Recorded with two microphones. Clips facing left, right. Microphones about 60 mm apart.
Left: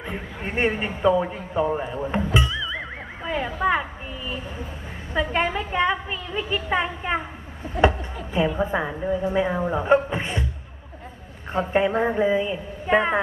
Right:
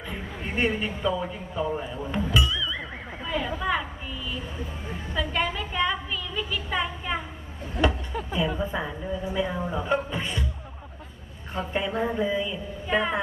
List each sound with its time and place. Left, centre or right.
0.0 s a man's voice: left
8.3 s a woman's voice: left
11.5 s a woman's voice: left